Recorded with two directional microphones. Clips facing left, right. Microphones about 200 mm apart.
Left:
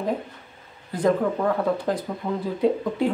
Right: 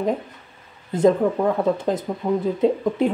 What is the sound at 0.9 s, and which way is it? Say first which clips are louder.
Speech: right 4 dB; 25° right (ahead or behind).